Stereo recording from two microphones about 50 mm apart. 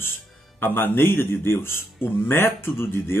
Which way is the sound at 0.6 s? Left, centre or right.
Left.